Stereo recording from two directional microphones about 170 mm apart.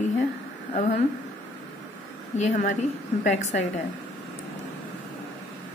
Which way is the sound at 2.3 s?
40° left (ahead or behind).